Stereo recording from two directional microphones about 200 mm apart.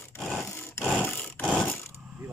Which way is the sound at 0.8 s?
Centre (ahead or behind).